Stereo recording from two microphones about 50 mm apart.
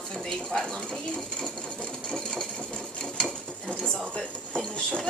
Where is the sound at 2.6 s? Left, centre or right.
Centre.